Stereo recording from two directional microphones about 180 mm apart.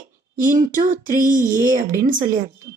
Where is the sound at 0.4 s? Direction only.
45° right (ahead or behind).